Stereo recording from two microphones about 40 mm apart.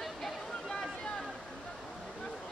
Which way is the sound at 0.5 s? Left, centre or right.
Centre.